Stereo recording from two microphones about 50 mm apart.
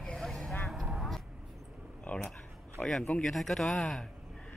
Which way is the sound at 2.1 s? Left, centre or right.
Left.